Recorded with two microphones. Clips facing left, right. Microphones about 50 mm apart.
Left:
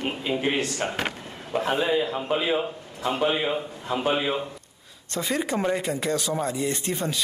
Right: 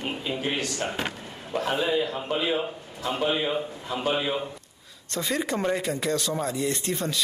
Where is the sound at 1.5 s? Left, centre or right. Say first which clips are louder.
Left 2 dB; centre.